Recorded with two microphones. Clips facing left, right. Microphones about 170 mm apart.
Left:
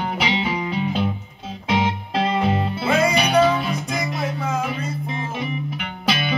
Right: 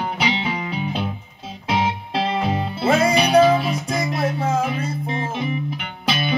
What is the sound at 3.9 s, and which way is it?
Music, 30° right (ahead or behind).